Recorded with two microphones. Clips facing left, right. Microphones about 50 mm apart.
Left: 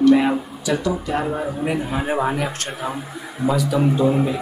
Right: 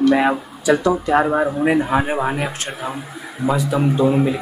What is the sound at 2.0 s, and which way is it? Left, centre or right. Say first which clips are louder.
Speech: even; centre.